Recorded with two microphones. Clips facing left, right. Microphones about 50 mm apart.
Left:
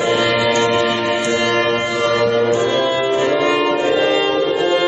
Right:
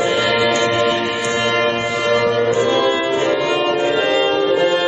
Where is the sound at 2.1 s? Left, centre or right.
Centre.